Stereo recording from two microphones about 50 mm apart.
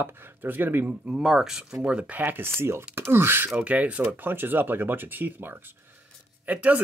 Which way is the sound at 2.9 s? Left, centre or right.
Right.